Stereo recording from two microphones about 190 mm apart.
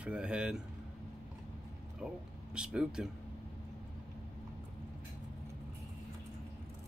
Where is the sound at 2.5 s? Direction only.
5° right (ahead or behind).